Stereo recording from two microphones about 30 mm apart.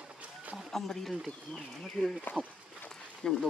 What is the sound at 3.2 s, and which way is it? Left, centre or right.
Speech, left.